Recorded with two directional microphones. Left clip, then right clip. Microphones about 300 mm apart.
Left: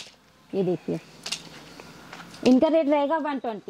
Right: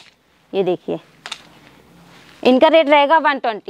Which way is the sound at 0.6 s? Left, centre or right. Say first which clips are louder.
Right 8 dB; right.